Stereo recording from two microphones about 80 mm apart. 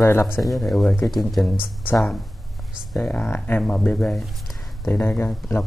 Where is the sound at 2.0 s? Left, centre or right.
Centre.